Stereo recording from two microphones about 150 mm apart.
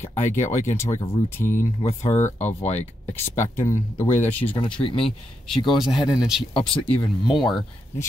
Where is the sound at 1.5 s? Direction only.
50° left (ahead or behind).